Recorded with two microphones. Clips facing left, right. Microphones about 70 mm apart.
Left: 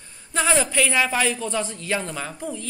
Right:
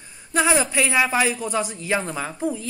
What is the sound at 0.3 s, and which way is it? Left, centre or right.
A woman's voice, centre.